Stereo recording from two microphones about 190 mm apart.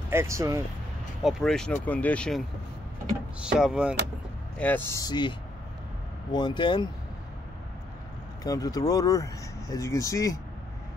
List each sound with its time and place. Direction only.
0.1 s speech: 15° right (ahead or behind)
1.2 s speech: centre (ahead or behind)
4.6 s speech: 10° left (ahead or behind)
6.3 s speech: 25° left (ahead or behind)
8.5 s speech: 20° left (ahead or behind)